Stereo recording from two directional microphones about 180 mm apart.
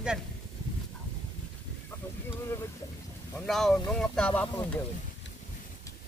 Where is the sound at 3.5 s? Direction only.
Centre (ahead or behind).